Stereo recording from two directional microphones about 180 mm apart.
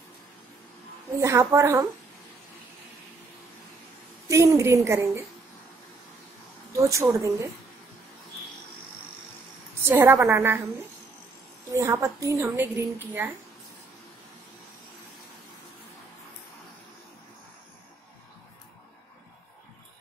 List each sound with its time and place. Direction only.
1.2 s a woman's voice: 15° right (ahead or behind)
4.3 s a woman's voice: 15° right (ahead or behind)
6.8 s a woman's voice: 15° right (ahead or behind)
9.8 s a woman's voice: 15° right (ahead or behind)